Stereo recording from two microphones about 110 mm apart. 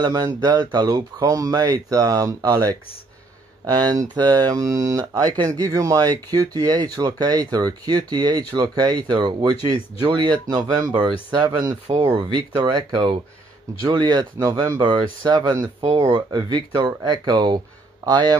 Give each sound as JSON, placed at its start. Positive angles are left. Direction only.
{"t": 0.0, "sound": "speech", "side_deg": -35}
{"t": 12.5, "sound": "speech", "side_deg": -45}
{"t": 14.4, "sound": "speech", "side_deg": -30}
{"t": 14.9, "sound": "speech", "side_deg": -40}